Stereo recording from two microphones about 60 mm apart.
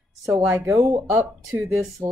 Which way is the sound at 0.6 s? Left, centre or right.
Right.